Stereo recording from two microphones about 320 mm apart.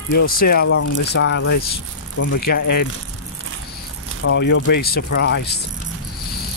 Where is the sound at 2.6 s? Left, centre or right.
Left.